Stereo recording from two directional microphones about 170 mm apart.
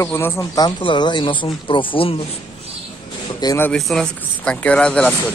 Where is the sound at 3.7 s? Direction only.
Centre (ahead or behind).